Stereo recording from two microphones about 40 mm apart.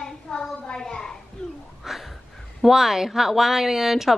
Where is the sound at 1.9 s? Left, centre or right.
Centre.